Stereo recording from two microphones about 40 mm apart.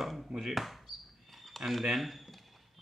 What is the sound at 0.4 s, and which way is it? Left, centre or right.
Speech, centre.